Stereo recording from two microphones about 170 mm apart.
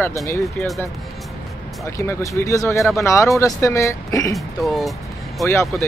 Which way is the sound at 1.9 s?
15° left (ahead or behind).